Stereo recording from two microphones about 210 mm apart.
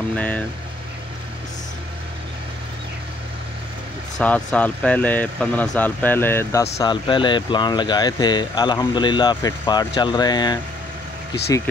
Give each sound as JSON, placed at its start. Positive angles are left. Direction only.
{"t": 0.1, "sound": "speech", "side_deg": 5}
{"t": 4.2, "sound": "speech", "side_deg": 5}